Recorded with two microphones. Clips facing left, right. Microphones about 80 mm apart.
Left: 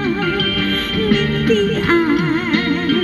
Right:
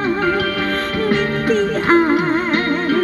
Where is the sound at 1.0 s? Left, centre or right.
Right.